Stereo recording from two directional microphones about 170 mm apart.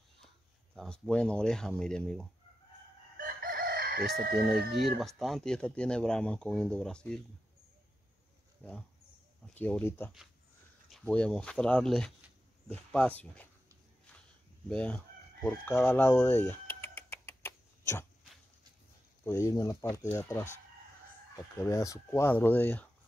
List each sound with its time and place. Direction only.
0.7 s speech: 5° left (ahead or behind)
3.2 s chicken: 60° right (ahead or behind)
4.6 s speech: centre (ahead or behind)
8.6 s speech: 10° left (ahead or behind)
14.7 s speech: 5° left (ahead or behind)
15.6 s a sound: 10° left (ahead or behind)
19.2 s speech: 20° left (ahead or behind)
21.5 s speech: 20° left (ahead or behind)